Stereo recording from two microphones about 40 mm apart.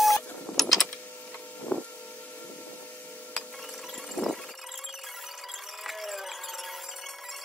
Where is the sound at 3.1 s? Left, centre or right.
Left.